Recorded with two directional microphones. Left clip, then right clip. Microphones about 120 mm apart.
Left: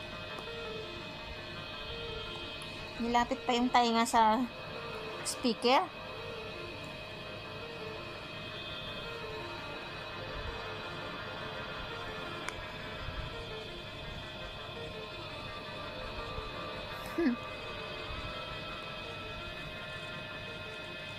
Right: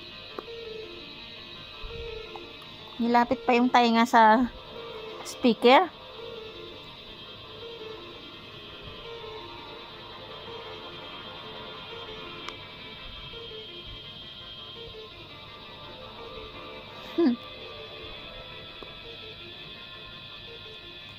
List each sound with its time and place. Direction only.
3.0 s speech: 20° right (ahead or behind)
17.2 s music: 5° right (ahead or behind)